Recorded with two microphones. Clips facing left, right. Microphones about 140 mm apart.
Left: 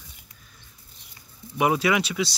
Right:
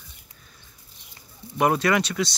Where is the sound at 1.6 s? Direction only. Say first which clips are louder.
Right 1 dB; 5° left (ahead or behind).